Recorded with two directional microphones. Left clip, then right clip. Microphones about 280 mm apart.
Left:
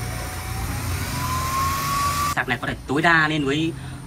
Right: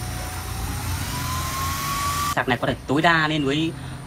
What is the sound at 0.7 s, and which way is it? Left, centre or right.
Vehicle, centre.